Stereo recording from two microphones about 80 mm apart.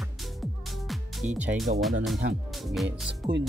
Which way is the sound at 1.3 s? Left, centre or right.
Centre.